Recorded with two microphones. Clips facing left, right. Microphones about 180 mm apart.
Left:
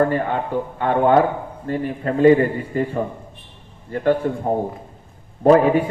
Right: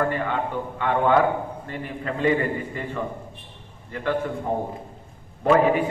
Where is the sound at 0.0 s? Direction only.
40° left (ahead or behind).